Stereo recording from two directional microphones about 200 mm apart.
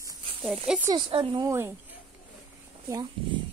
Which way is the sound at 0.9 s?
25° right (ahead or behind).